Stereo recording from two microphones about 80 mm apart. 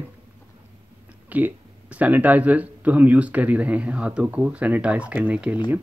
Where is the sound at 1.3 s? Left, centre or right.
Centre.